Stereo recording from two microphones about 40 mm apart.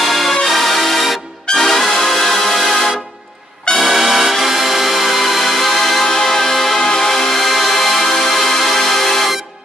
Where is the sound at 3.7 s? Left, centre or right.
Centre.